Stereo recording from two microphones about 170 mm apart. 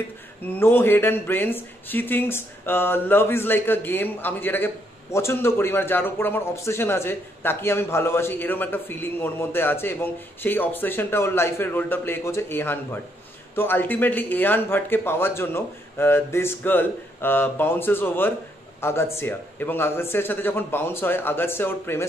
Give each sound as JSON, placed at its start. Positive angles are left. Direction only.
{"t": 0.4, "sound": "a man's voice", "side_deg": 10}